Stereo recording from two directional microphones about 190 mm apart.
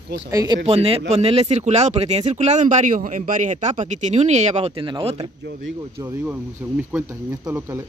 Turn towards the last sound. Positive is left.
turn(degrees=-10)  # may be behind; listen again after turning